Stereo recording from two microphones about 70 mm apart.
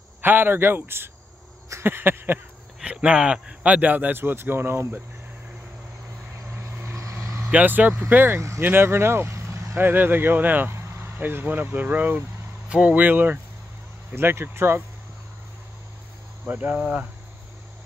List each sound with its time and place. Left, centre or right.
0.2 s a man's voice: right
1.7 s a sound: right
2.8 s speech: centre; by 5.0 s right
6.6 s vehicle: right
7.5 s speech: right
8.4 s a man's voice: right
16.4 s speech: right